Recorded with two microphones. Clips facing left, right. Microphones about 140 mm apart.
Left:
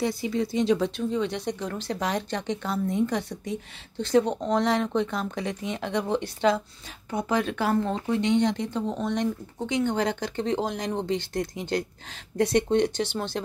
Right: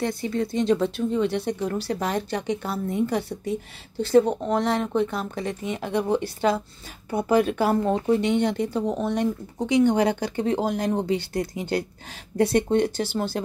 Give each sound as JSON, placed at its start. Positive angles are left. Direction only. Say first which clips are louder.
{"t": 0.0, "sound": "speech", "louder": "right 1 dB", "side_deg": 0}